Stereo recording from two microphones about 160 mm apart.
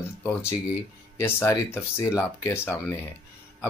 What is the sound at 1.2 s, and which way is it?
Speech, 15° left (ahead or behind).